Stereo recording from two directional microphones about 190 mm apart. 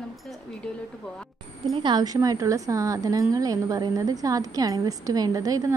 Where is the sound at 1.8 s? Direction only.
20° right (ahead or behind).